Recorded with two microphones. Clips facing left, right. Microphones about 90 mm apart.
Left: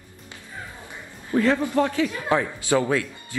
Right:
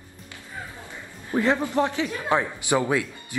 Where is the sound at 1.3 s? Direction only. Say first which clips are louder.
Left 2 dB; 20° right (ahead or behind).